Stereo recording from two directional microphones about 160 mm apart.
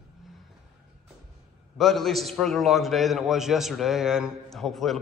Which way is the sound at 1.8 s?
Centre (ahead or behind).